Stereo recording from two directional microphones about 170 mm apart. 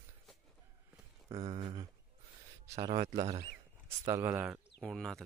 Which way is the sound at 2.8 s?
25° right (ahead or behind).